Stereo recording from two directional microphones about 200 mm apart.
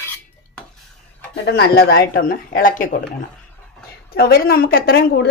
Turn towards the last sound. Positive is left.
turn(degrees=50)  # may be behind; listen again after turning